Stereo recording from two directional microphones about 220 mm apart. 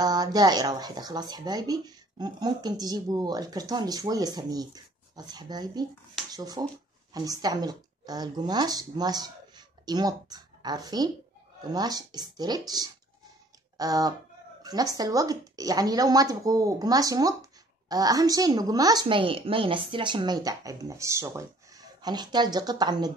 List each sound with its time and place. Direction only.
0.0 s speech: 15° right (ahead or behind)